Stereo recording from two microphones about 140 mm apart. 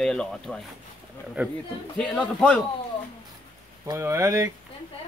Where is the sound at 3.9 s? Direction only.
20° right (ahead or behind).